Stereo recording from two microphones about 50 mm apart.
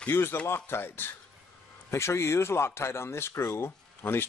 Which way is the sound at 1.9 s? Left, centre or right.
Left.